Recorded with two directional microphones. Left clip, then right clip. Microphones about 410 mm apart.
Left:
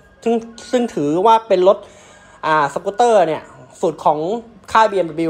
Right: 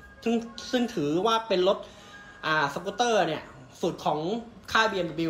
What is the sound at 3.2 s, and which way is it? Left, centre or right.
Speech, centre.